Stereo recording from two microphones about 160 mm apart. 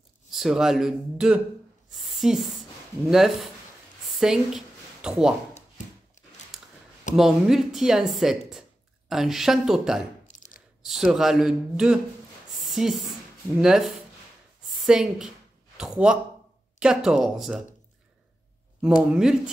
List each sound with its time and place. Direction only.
0.3 s a woman's voice: centre (ahead or behind)
4.1 s a sound: 5° right (ahead or behind)
7.2 s speech: centre (ahead or behind)
10.3 s a sound: 50° left (ahead or behind)
10.8 s speech: centre (ahead or behind)
19.1 s speech: 5° right (ahead or behind)